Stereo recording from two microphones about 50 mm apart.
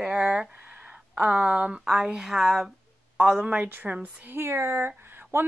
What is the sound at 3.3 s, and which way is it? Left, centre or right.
Speech, centre.